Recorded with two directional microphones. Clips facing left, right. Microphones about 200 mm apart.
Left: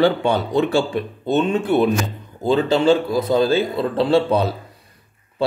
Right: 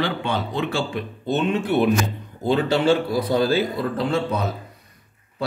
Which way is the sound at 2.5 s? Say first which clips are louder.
Left 3 dB; 25° left (ahead or behind).